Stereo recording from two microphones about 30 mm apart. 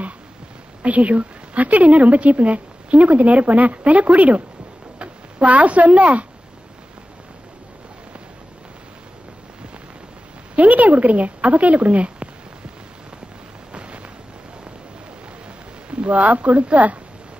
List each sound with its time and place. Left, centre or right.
0.8 s a woman's voice: right
4.9 s speech: right
10.5 s a woman's voice: right
13.7 s a sound: right
15.9 s speech: right